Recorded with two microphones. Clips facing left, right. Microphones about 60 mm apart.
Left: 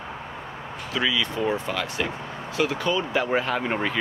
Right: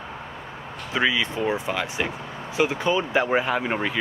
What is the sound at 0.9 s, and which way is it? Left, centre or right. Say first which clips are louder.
Speech: right 2 dB; right.